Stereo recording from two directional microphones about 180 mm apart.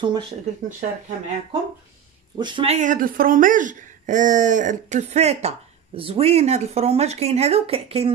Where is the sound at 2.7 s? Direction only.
45° right (ahead or behind).